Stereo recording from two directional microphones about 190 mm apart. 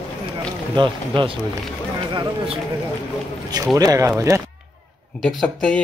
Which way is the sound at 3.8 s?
15° right (ahead or behind).